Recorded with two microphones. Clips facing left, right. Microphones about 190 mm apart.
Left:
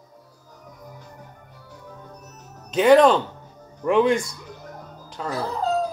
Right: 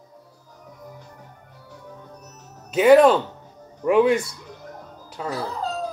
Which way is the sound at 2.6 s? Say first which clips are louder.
Right 1 dB; 5° right (ahead or behind).